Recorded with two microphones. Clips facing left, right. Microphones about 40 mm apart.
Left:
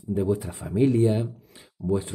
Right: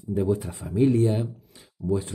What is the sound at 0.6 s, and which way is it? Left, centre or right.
Speech, centre.